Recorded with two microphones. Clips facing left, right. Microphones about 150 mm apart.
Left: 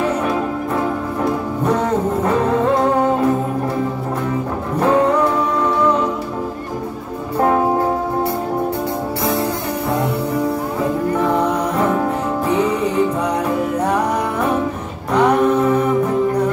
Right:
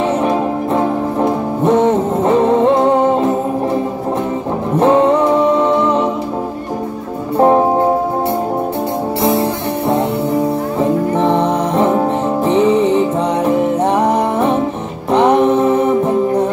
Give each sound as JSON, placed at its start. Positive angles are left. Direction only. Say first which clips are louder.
{"t": 0.2, "sound": "music", "louder": "right 4 dB", "side_deg": -25}
{"t": 4.7, "sound": "music", "louder": "right 4 dB", "side_deg": -25}
{"t": 7.3, "sound": "music", "louder": "right 5 dB", "side_deg": -25}
{"t": 9.2, "sound": "music", "louder": "right 6 dB", "side_deg": -25}
{"t": 15.1, "sound": "a sound", "louder": "right 3 dB", "side_deg": -25}